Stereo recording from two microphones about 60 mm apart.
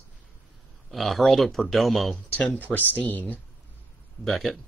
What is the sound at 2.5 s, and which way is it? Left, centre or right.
Speech, left.